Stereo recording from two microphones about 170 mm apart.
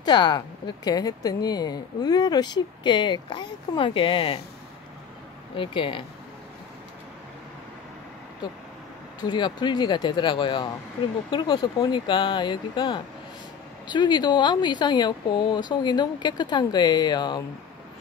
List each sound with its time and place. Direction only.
0.0 s speech: 25° left (ahead or behind)
5.6 s speech: 30° left (ahead or behind)
9.2 s speech: 25° left (ahead or behind)